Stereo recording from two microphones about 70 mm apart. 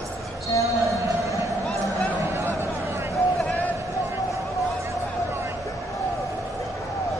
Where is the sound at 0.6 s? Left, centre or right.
Right.